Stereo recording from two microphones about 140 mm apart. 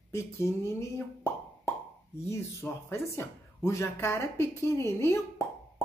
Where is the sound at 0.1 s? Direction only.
20° left (ahead or behind).